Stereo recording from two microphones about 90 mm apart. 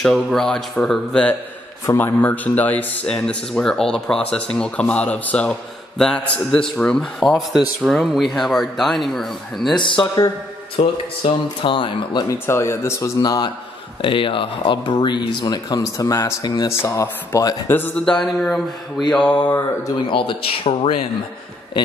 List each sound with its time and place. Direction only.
0.0 s speech: 5° left (ahead or behind)
3.2 s speech: 5° left (ahead or behind)
9.8 s speech: 65° left (ahead or behind)
10.8 s speech: 80° left; by 12.3 s 65° left (ahead or behind)
12.4 s speech: 30° left (ahead or behind)
13.2 s a man's voice: 50° left (ahead or behind)
14.0 s speech: 75° left (ahead or behind); by 17.6 s 35° left (ahead or behind)
17.6 s speech: 25° left (ahead or behind)
17.9 s speech: 5° left (ahead or behind)
20.1 s speech: 70° left (ahead or behind)